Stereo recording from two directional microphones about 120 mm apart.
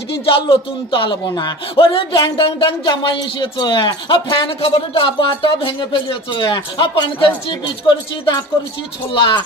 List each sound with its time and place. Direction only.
0.2 s speech: 45° left (ahead or behind)